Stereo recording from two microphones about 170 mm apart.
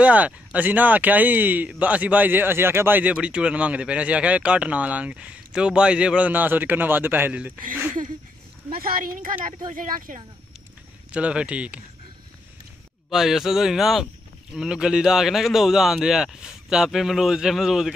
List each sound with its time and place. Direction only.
0.0 s speech: 10° right (ahead or behind)
8.8 s a woman's voice: 55° right (ahead or behind)
11.1 s speech: 5° right (ahead or behind)
13.1 s a man's voice: centre (ahead or behind)